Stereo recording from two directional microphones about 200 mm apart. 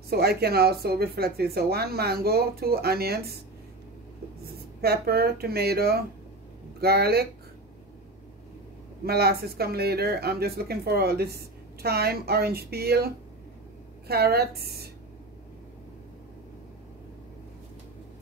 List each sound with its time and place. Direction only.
0.1 s speech: 50° right (ahead or behind)
4.8 s speech: 50° right (ahead or behind)
9.0 s speech: 50° right (ahead or behind)